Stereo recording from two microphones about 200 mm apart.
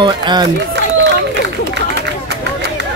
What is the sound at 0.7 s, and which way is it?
Run, 60° right (ahead or behind).